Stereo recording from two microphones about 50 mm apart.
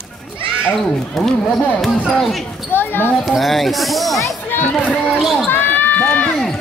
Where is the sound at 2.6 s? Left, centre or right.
Left.